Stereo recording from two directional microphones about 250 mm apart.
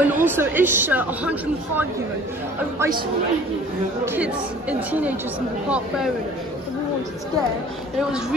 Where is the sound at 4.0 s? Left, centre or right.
Centre.